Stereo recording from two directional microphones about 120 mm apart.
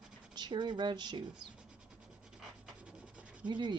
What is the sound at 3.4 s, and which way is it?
Speech, 40° right (ahead or behind).